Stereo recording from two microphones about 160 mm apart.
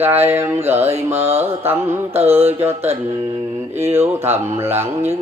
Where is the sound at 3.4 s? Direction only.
15° right (ahead or behind).